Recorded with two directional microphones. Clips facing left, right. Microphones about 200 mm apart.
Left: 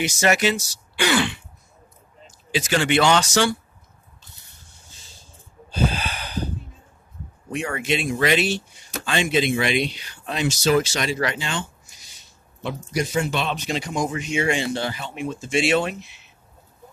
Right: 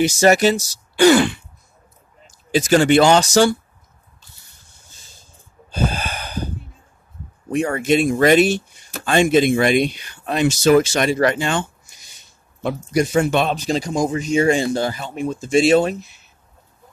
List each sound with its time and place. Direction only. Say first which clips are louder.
0.0 s speech: right 6 dB; 35° right (ahead or behind)
2.5 s speech: right 7 dB; 45° right (ahead or behind)
4.9 s vehicle: right 1 dB; 45° right (ahead or behind)
5.7 s snort: right 1 dB; 45° right (ahead or behind)
7.5 s speech: right 8 dB; 45° right (ahead or behind)
12.6 s speech: right 6 dB; 50° right (ahead or behind)
13.6 s speech: right 5 dB; 35° right (ahead or behind)